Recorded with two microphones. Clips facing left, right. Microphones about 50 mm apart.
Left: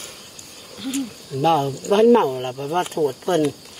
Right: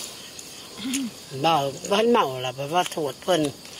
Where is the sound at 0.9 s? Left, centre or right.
Right.